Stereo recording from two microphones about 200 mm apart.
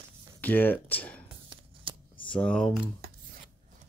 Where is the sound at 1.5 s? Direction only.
25° right (ahead or behind).